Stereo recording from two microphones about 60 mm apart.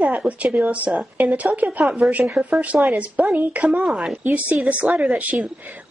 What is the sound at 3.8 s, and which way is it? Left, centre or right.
Speech, centre.